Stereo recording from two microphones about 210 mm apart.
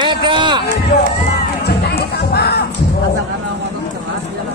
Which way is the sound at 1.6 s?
50° left (ahead or behind).